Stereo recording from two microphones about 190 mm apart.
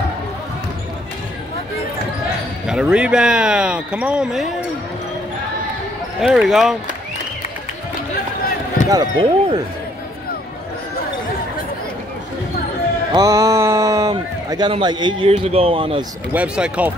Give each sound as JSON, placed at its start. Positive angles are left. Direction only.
{"t": 2.6, "sound": "speech", "side_deg": -5}
{"t": 6.2, "sound": "speech", "side_deg": 0}
{"t": 8.9, "sound": "speech", "side_deg": -20}
{"t": 13.1, "sound": "a man's voice", "side_deg": -15}
{"t": 16.3, "sound": "speech", "side_deg": -5}